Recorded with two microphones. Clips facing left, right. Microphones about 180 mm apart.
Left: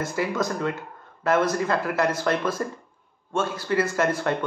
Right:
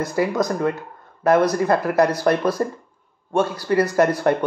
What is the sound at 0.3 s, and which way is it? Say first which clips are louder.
Speech: right 5 dB; 35° right (ahead or behind).